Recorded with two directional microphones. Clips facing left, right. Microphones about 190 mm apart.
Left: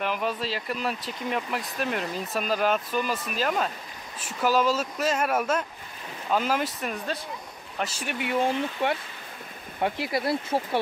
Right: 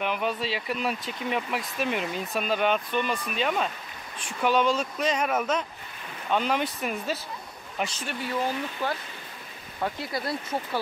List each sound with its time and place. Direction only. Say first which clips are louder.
0.0 s speech: even; centre (ahead or behind)
8.3 s speech: left 4 dB; 25° left (ahead or behind)
10.0 s speech: left 4 dB; 25° left (ahead or behind)